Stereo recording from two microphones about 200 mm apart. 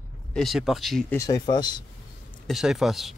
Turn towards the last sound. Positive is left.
turn(degrees=0)  # may be behind; listen again after turning